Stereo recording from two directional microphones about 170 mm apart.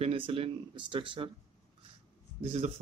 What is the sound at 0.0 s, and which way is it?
Speech, 35° right (ahead or behind).